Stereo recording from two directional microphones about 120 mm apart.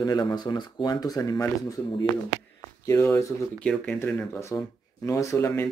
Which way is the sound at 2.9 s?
25° left (ahead or behind).